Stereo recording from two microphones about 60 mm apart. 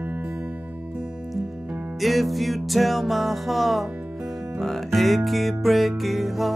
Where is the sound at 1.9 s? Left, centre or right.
Centre.